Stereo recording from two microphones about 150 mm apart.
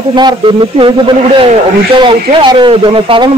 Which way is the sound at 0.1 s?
30° right (ahead or behind).